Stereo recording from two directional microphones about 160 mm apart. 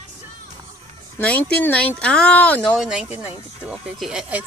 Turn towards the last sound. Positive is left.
turn(degrees=-5)  # may be behind; listen again after turning